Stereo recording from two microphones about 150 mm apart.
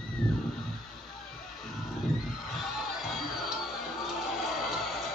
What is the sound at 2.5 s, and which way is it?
Music, centre (ahead or behind).